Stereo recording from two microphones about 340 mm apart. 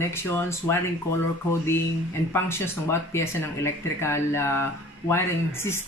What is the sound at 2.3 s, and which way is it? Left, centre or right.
Speech, centre.